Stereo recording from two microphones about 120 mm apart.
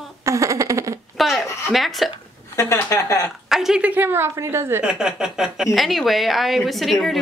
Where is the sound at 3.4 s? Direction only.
5° right (ahead or behind); by 4.8 s 20° right (ahead or behind).